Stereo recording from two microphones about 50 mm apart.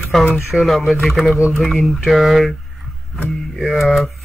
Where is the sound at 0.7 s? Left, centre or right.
Centre.